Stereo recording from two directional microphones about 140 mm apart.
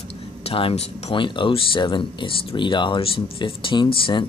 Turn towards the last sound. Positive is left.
turn(degrees=35)  # may be behind; listen again after turning